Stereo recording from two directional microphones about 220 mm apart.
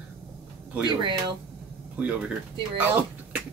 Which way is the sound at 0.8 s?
20° right (ahead or behind).